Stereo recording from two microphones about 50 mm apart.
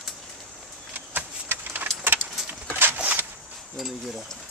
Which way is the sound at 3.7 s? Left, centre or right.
Centre.